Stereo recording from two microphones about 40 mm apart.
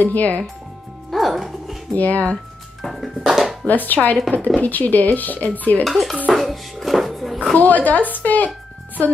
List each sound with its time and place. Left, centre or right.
0.0 s speech: left
1.1 s music: centre
2.0 s speech: left
2.8 s a sound: centre
3.6 s speech: left
5.9 s speech: centre
6.3 s music: centre
7.5 s speech: left